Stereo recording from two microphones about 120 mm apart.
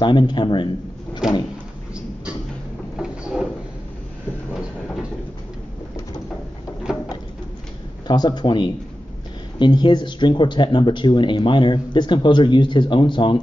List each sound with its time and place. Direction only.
0.0 s speech: 40° left (ahead or behind)
1.2 s vehicle: 5° right (ahead or behind)
3.0 s drawer open or close: 5° right (ahead or behind)
6.9 s a sound: 5° right (ahead or behind)
8.1 s speech: 35° left (ahead or behind)